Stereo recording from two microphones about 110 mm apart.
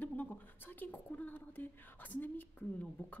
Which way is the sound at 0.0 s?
15° left (ahead or behind).